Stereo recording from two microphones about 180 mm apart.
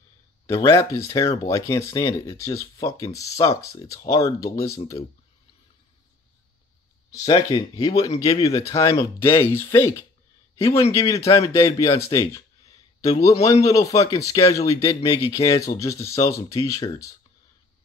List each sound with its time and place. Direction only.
0.5 s speech: 15° left (ahead or behind)
7.1 s speech: 20° left (ahead or behind)